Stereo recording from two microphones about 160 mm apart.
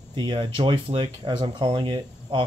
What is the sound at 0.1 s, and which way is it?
Speech, 30° right (ahead or behind).